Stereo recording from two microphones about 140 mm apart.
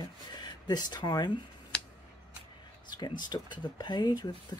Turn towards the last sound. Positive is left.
turn(degrees=30)  # may be behind; listen again after turning